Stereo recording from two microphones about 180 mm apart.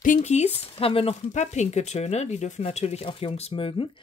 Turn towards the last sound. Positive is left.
turn(degrees=30)  # may be behind; listen again after turning